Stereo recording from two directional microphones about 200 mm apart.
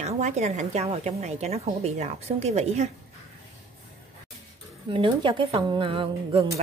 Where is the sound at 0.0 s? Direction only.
35° right (ahead or behind).